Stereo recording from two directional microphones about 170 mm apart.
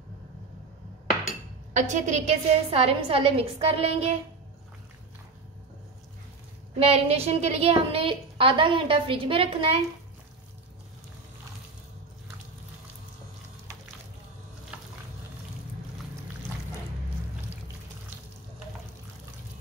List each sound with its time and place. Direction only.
1.7 s a woman's voice: 45° right (ahead or behind)
6.8 s a woman's voice: 35° right (ahead or behind)